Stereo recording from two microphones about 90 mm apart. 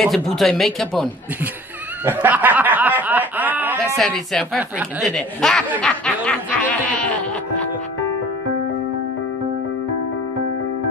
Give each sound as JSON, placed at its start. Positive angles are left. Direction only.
{"t": 0.0, "sound": "speech", "side_deg": 0}
{"t": 2.0, "sound": "snicker", "side_deg": -20}
{"t": 3.9, "sound": "speech", "side_deg": 5}
{"t": 5.8, "sound": "snicker", "side_deg": 10}
{"t": 6.2, "sound": "music", "side_deg": 15}